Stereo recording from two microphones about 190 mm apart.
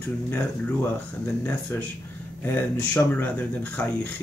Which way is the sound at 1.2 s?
10° left (ahead or behind).